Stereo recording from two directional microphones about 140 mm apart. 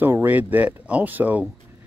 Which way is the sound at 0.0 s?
15° right (ahead or behind).